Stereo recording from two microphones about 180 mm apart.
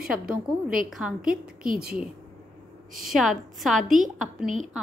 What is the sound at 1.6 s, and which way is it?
Speech, 55° right (ahead or behind).